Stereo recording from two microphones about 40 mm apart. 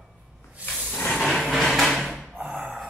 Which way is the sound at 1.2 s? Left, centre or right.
Centre.